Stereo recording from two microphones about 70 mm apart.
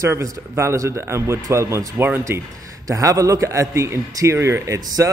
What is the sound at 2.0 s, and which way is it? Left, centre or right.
Speech, right.